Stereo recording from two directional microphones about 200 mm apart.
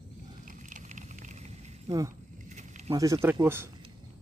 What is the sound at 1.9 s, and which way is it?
Speech, 15° right (ahead or behind).